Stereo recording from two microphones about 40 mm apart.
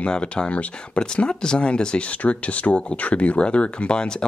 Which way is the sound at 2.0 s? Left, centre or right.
Left.